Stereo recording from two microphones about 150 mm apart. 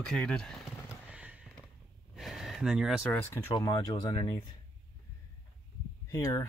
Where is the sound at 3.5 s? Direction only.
30° left (ahead or behind).